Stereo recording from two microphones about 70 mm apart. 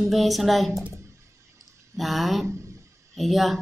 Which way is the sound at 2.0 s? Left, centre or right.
Centre.